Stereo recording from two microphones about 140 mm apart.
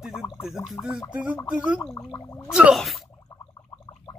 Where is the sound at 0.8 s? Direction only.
30° left (ahead or behind).